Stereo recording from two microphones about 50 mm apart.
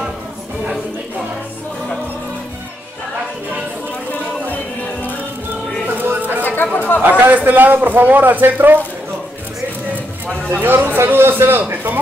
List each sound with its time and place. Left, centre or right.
5.9 s music: right
6.4 s chatter: left
7.0 s a man's voice: right
10.5 s a man's voice: right